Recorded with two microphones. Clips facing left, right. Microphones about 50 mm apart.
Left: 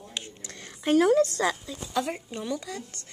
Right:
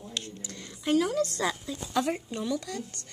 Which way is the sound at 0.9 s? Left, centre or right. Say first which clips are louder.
Left 6 dB; left.